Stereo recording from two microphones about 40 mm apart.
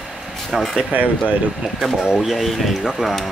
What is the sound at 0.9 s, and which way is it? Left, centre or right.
Speech, right.